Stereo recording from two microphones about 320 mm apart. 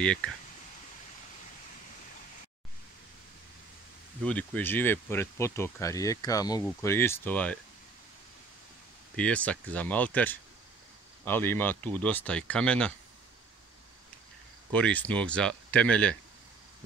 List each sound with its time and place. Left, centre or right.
0.0 s speech: centre
4.2 s speech: centre
9.1 s speech: centre
14.7 s speech: centre